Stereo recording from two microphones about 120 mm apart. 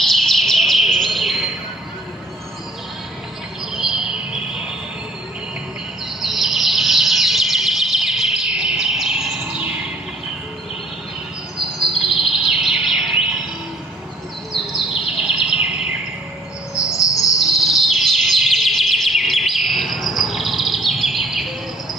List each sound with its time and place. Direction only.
0.0 s chirp: centre (ahead or behind)
3.7 s a sound: 5° right (ahead or behind)
6.2 s bird vocalization: centre (ahead or behind)
12.0 s bird vocalization: 5° right (ahead or behind)
14.5 s bird vocalization: centre (ahead or behind)
16.7 s music: 25° left (ahead or behind)
17.4 s chirp: 5° right (ahead or behind)